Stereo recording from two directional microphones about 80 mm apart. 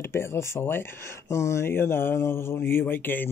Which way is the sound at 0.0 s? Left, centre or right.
Left.